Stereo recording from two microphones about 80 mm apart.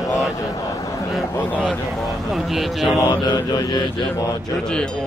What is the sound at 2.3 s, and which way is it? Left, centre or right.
Mantra, centre.